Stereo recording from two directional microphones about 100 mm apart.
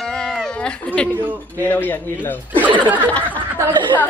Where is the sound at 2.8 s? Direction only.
15° right (ahead or behind).